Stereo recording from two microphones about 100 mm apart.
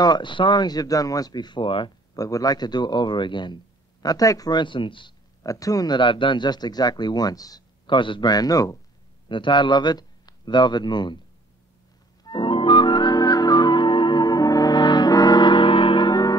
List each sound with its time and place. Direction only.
0.0 s speech: 50° left (ahead or behind)
2.1 s speech: 35° left (ahead or behind)
4.0 s speech: 40° left (ahead or behind); by 5.1 s 55° left (ahead or behind)
5.4 s speech: 35° left (ahead or behind)
5.9 s speech: 55° left (ahead or behind); by 8.7 s 35° left (ahead or behind)
9.3 s a man's voice: 55° left (ahead or behind)
12.3 s music: 55° left (ahead or behind)